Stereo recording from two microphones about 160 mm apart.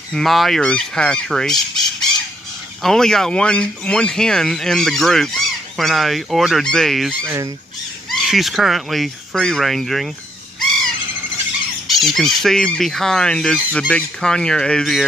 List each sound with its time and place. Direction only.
0.1 s fowl: centre (ahead or behind)
2.8 s speech: 5° left (ahead or behind)
7.2 s speech: 20° right (ahead or behind)
8.1 s speech: centre (ahead or behind)
10.6 s squawk: 5° left (ahead or behind)
11.9 s speech: centre (ahead or behind)